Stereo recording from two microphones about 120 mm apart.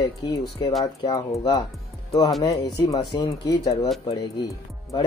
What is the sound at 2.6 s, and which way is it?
Speech, 30° left (ahead or behind).